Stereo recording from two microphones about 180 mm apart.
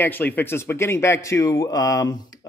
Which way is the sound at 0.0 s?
10° left (ahead or behind).